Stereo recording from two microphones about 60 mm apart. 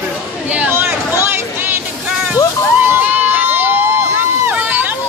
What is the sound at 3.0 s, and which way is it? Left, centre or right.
Crowd, right.